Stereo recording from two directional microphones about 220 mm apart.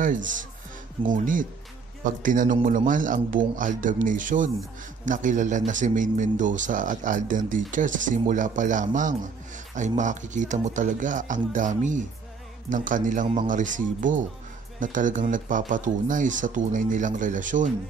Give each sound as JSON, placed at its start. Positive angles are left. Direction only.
{"t": 0.0, "sound": "speech", "side_deg": -35}